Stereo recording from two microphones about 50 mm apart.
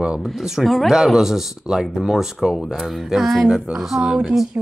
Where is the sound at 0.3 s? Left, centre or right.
Centre.